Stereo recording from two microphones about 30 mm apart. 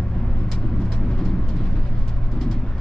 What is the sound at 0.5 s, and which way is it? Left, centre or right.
Vehicle, left.